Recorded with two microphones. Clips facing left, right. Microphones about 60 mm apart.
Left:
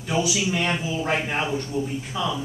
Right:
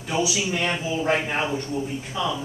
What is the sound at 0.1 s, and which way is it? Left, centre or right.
Speech, centre.